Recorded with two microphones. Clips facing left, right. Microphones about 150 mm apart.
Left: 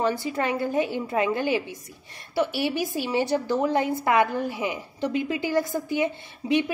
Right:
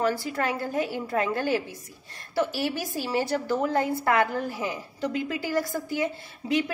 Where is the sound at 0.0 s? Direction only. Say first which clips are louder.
Left 1 dB; 20° left (ahead or behind).